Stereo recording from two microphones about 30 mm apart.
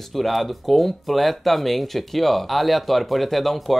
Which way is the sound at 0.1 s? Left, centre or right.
Centre.